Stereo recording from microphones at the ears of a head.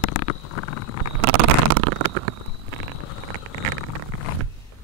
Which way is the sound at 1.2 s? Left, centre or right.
Right.